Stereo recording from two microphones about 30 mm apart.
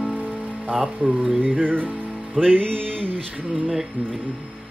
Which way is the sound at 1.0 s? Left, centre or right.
Right.